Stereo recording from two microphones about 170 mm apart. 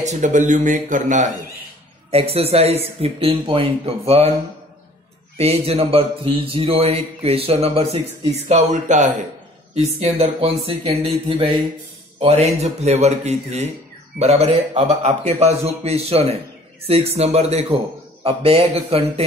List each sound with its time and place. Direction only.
0.0 s a man's voice: 45° right (ahead or behind)
2.0 s speech: 35° right (ahead or behind)
5.4 s a man's voice: 35° right (ahead or behind)